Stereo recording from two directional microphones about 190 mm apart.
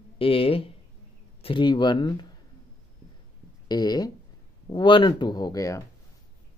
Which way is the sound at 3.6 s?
20° left (ahead or behind).